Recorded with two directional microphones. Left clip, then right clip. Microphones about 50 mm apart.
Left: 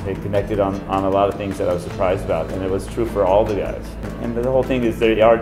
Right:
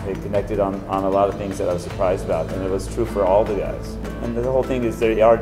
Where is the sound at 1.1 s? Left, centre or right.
Right.